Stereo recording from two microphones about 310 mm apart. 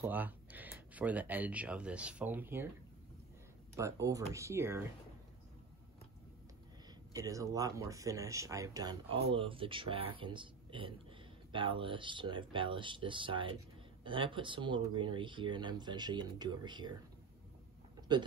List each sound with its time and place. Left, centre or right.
0.0 s speech: centre
3.7 s speech: centre
7.2 s speech: centre
18.1 s speech: centre